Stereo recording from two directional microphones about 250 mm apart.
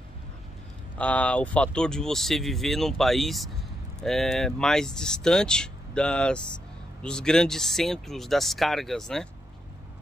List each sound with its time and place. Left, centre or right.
0.9 s speech: centre